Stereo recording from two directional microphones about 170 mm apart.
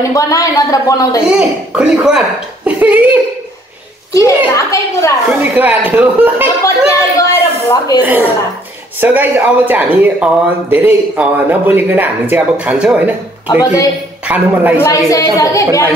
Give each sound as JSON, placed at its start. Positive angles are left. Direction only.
{"t": 0.1, "sound": "a woman's voice", "side_deg": 20}
{"t": 1.8, "sound": "speech", "side_deg": -5}
{"t": 4.1, "sound": "a woman's voice", "side_deg": 20}
{"t": 5.4, "sound": "speech", "side_deg": -10}
{"t": 7.2, "sound": "speech", "side_deg": 20}
{"t": 8.0, "sound": "speech", "side_deg": -10}
{"t": 14.8, "sound": "a woman's voice", "side_deg": 20}